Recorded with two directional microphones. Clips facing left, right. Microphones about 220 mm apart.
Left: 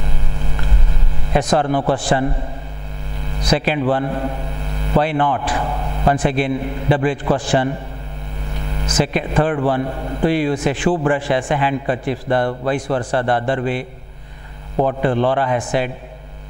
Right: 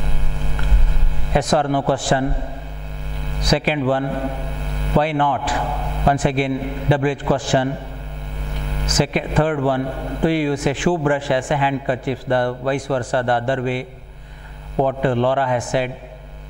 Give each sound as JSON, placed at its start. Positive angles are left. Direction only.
{"t": 1.3, "sound": "a man's voice", "side_deg": 10}
{"t": 3.4, "sound": "a man's voice", "side_deg": 10}
{"t": 8.9, "sound": "a man's voice", "side_deg": 10}
{"t": 10.2, "sound": "a man's voice", "side_deg": 10}